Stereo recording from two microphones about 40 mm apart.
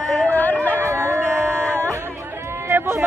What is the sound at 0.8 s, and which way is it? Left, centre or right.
Music, right.